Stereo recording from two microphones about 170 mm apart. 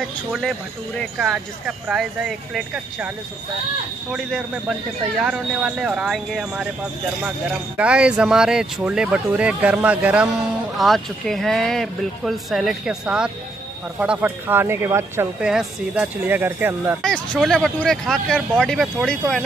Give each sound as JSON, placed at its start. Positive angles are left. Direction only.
{"t": 0.3, "sound": "speech", "side_deg": 0}
{"t": 4.1, "sound": "speech", "side_deg": 0}
{"t": 17.0, "sound": "speech", "side_deg": 5}